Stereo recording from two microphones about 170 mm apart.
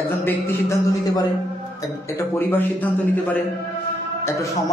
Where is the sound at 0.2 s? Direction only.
15° left (ahead or behind).